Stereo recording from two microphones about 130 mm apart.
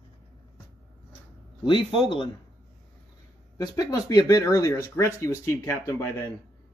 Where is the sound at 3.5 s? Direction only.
30° left (ahead or behind).